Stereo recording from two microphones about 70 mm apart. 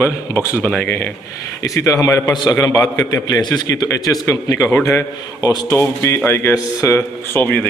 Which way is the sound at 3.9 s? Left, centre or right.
Left.